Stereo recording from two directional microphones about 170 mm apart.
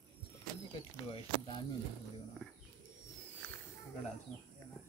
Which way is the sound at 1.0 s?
30° left (ahead or behind).